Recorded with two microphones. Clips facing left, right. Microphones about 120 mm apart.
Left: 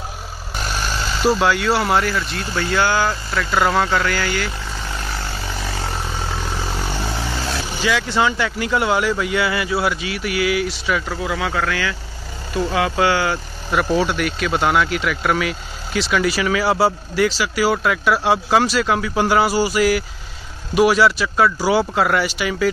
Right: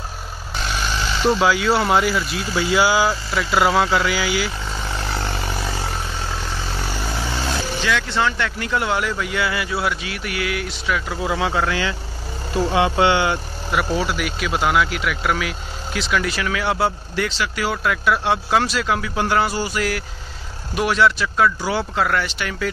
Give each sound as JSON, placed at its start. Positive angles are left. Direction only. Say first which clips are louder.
{"t": 0.7, "sound": "speech", "louder": "right 1 dB", "side_deg": 5}
{"t": 7.8, "sound": "speech", "louder": "left 3 dB", "side_deg": 5}
{"t": 11.1, "sound": "speech", "louder": "right 1 dB", "side_deg": -25}
{"t": 13.7, "sound": "speech", "louder": "left 3 dB", "side_deg": -5}